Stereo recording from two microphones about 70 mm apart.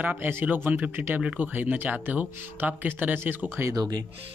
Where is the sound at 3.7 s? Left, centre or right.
Right.